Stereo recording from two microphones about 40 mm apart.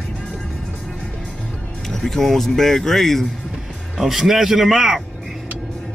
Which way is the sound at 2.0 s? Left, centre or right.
Centre.